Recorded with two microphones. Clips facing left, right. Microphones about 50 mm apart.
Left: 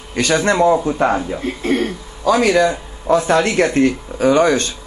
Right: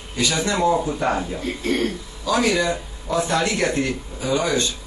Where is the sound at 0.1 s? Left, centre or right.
Left.